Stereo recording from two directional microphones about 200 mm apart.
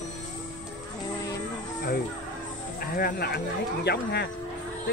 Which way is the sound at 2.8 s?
45° left (ahead or behind).